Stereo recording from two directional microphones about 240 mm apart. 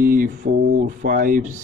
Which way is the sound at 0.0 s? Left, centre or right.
Right.